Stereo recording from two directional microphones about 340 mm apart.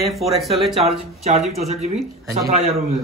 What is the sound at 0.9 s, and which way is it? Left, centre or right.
A man's voice, centre.